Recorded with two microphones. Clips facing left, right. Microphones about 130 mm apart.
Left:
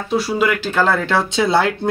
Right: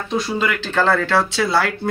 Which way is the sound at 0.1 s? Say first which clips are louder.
Left 4 dB; 5° left (ahead or behind).